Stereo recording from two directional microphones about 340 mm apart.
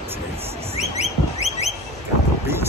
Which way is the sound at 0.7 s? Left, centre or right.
Centre.